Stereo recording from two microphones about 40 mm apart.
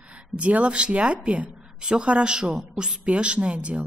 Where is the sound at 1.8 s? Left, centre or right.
Right.